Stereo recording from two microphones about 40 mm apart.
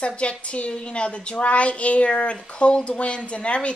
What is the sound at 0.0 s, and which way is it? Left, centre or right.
A woman's voice, left.